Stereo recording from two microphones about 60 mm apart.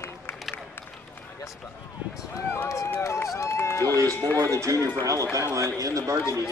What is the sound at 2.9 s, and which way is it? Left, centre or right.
Speech, left.